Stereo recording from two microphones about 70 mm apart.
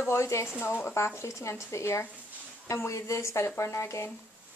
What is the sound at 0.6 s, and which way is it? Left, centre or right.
A woman's voice, left.